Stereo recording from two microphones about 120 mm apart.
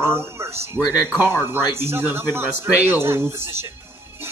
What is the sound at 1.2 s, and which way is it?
Speech, 20° right (ahead or behind).